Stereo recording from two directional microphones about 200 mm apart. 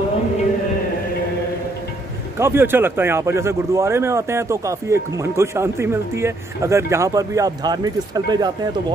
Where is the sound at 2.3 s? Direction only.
10° right (ahead or behind).